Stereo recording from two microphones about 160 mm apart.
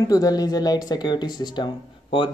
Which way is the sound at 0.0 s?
25° left (ahead or behind).